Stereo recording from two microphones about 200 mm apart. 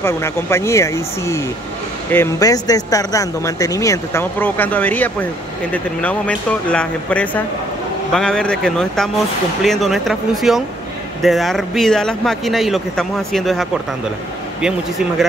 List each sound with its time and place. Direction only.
0.0 s speech: 15° left (ahead or behind)